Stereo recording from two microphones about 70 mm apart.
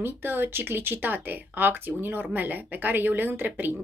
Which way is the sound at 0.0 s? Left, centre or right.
Right.